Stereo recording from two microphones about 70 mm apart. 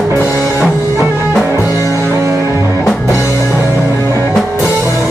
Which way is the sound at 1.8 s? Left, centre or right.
Left.